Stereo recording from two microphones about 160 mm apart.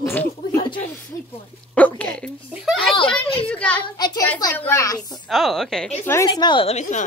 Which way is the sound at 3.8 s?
25° left (ahead or behind).